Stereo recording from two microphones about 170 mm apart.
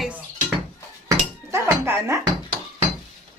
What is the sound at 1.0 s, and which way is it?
Chink, 15° right (ahead or behind).